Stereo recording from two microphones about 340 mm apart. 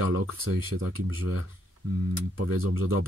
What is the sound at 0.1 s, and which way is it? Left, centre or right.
Speech, right.